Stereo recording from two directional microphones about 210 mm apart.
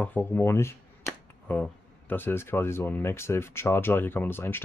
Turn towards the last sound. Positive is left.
turn(degrees=10)  # may be behind; listen again after turning